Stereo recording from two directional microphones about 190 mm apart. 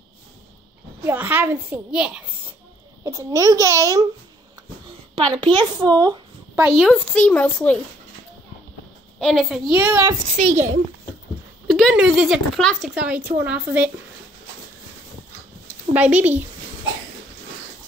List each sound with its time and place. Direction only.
1.0 s a child's voice: 10° right (ahead or behind)
3.0 s a child's voice: 20° right (ahead or behind)
5.3 s a child's voice: 25° right (ahead or behind)
6.8 s speech: 5° left (ahead or behind)
9.2 s speech: centre (ahead or behind)
9.8 s a child's voice: 10° right (ahead or behind)
10.3 s a child's voice: 40° right (ahead or behind)
11.6 s a child's voice: centre (ahead or behind)
15.9 s a child's voice: 5° right (ahead or behind)